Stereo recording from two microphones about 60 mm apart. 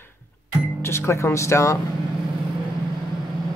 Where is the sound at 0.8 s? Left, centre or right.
Left.